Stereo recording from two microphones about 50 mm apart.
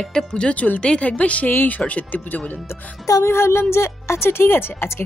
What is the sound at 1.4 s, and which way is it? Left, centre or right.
Speech, left.